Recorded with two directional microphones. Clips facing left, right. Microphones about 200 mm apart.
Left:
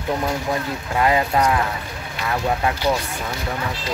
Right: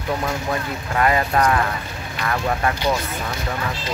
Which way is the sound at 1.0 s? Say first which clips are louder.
Even; 15° left (ahead or behind).